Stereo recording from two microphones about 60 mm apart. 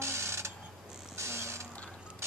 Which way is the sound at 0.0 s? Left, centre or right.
Right.